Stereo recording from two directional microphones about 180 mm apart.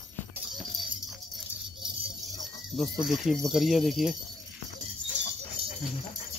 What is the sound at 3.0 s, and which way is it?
Speech, centre (ahead or behind).